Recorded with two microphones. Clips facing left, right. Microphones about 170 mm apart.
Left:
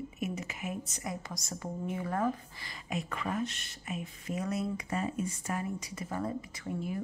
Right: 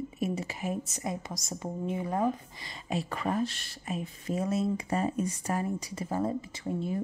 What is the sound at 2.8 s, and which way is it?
Speech, 35° right (ahead or behind).